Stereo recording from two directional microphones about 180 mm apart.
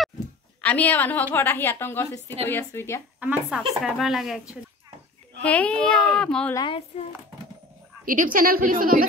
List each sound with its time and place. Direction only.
0.6 s a woman's voice: 10° left (ahead or behind)
3.2 s speech: 5° right (ahead or behind)
6.5 s a woman's voice: 25° left (ahead or behind)
8.0 s a woman's voice: 50° right (ahead or behind)